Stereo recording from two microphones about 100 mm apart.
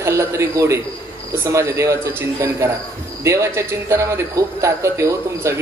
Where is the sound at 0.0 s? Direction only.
25° right (ahead or behind).